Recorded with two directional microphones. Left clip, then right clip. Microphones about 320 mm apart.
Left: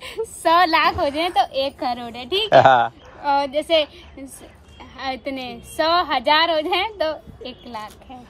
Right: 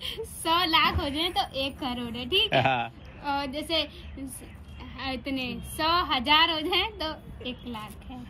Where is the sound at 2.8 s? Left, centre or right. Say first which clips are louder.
Left 11 dB; left.